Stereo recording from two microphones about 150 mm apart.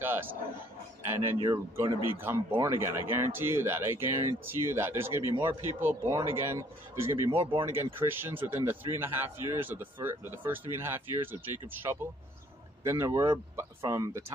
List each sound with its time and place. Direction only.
0.0 s a sound: 15° right (ahead or behind)
1.0 s speech: 15° right (ahead or behind)
1.5 s speech: 30° right (ahead or behind)
2.1 s speech: 15° right (ahead or behind)